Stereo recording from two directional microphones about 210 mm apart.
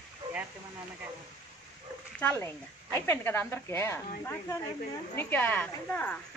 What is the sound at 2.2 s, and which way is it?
Speech, 10° left (ahead or behind).